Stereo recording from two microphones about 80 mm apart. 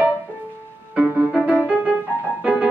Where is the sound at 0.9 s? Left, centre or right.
Centre.